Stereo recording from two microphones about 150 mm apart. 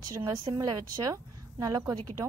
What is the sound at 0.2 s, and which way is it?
A woman's voice, 25° right (ahead or behind).